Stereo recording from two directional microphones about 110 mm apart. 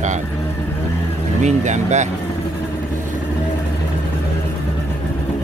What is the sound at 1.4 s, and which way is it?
Speech, 90° right.